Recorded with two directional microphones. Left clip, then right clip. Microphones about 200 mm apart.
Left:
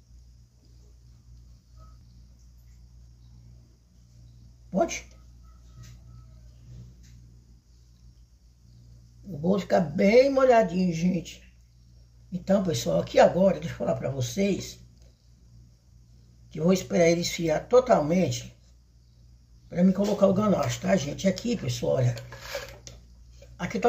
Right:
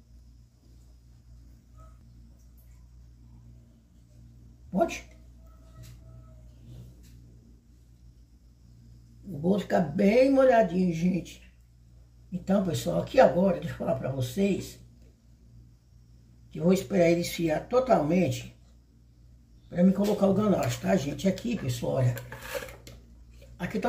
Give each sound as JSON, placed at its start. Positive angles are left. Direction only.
{"t": 9.5, "sound": "speech", "side_deg": 10}
{"t": 12.4, "sound": "speech", "side_deg": 20}
{"t": 16.5, "sound": "speech", "side_deg": 10}
{"t": 19.7, "sound": "speech", "side_deg": 10}
{"t": 23.5, "sound": "speech", "side_deg": 10}